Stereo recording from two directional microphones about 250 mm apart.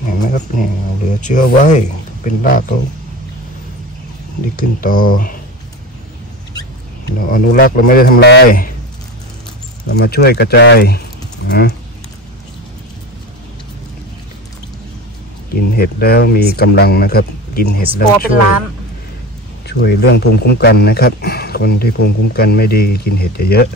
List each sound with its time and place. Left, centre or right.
0.1 s speech: left
4.6 s speech: left
7.2 s speech: left
9.8 s speech: left
15.5 s speech: left
19.8 s speech: left